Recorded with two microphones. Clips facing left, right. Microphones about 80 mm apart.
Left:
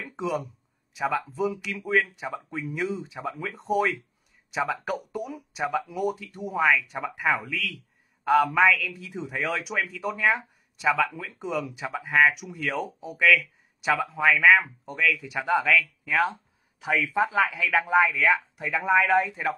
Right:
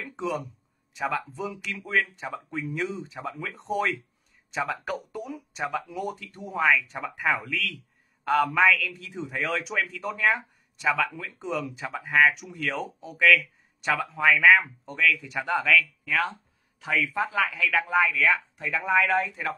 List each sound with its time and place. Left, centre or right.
0.0 s a sound: centre
0.9 s speech: centre
16.8 s speech: centre